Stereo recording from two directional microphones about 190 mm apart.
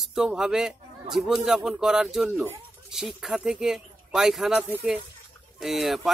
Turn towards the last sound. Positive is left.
turn(degrees=0)  # may be behind; listen again after turning